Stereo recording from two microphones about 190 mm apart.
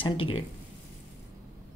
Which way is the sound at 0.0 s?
30° left (ahead or behind).